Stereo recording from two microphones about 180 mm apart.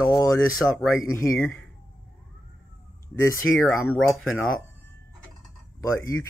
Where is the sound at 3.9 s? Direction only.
5° left (ahead or behind).